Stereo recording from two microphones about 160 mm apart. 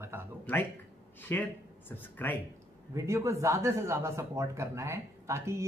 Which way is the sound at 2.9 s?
20° right (ahead or behind).